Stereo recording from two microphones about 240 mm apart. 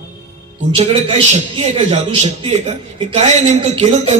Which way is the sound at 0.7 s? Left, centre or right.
Right.